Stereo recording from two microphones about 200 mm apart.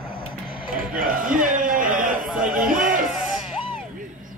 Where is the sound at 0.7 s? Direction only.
45° right (ahead or behind).